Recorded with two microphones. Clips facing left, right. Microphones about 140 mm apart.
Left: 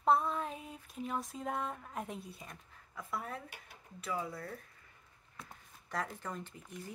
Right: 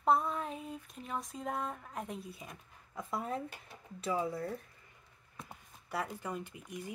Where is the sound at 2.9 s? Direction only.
20° right (ahead or behind).